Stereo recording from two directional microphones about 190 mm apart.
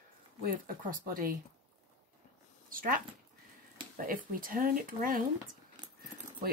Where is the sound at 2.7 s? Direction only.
50° right (ahead or behind).